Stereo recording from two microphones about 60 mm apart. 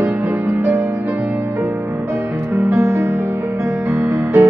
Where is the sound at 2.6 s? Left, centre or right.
Right.